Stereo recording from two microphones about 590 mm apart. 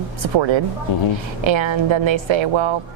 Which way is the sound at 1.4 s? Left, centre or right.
Right.